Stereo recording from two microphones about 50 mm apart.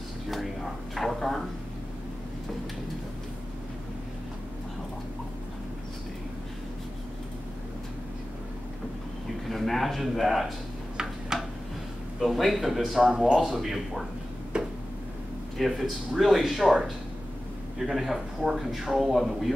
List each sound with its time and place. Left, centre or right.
0.3 s a man's voice: centre
9.5 s a sound: centre
12.2 s a man's voice: centre
14.5 s tick-tock: centre
15.5 s a man's voice: centre